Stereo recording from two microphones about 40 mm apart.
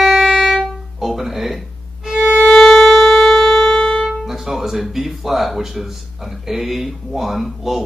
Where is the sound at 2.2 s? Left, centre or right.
Left.